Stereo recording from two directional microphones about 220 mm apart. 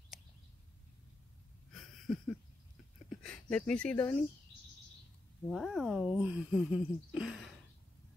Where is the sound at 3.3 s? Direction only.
5° left (ahead or behind).